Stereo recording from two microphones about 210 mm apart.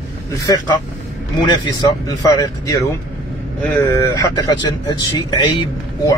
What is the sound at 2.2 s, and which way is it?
Speech, 15° left (ahead or behind).